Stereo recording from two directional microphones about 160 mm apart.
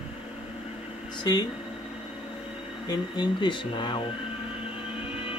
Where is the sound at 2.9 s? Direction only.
30° left (ahead or behind).